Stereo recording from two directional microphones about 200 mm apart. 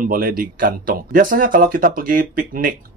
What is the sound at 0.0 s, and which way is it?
Speech, 45° right (ahead or behind).